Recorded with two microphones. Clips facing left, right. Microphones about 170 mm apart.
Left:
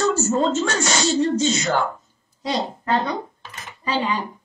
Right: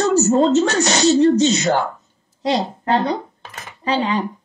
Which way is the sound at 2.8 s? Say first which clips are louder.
Right 3 dB; 35° right (ahead or behind).